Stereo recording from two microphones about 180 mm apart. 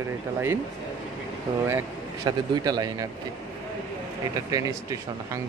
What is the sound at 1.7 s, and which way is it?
Speech, 20° right (ahead or behind).